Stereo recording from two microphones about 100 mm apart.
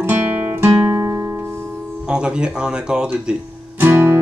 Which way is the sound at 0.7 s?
25° right (ahead or behind).